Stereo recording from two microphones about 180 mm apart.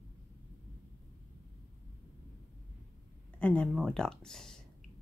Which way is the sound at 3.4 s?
5° left (ahead or behind).